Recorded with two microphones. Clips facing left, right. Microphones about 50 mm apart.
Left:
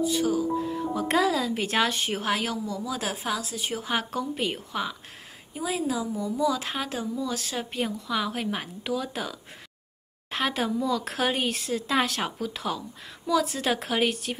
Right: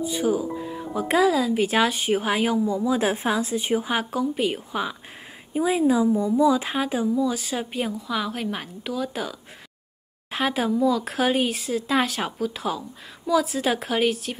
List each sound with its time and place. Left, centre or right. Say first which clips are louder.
0.1 s speech: right 1 dB; centre
3.9 s speech: right 4 dB; centre
5.5 s a woman's voice: right 8 dB; right; by 14.4 s centre